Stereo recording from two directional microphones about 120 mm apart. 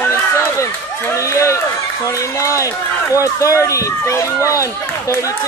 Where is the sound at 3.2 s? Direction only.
25° left (ahead or behind).